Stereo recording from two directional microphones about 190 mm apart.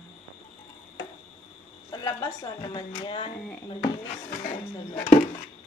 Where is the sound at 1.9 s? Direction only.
20° left (ahead or behind).